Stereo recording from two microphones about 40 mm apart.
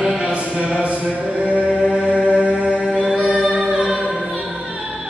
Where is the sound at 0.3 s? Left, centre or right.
Right.